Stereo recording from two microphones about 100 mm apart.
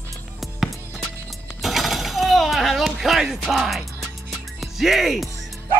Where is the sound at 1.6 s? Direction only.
Centre (ahead or behind).